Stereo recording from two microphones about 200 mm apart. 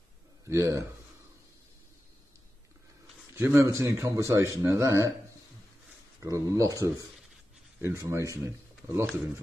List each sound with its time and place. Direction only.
0.5 s speech: 15° right (ahead or behind)
3.3 s speech: 15° right (ahead or behind)
6.2 s speech: 15° right (ahead or behind)